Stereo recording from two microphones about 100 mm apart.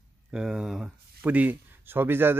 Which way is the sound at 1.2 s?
15° right (ahead or behind).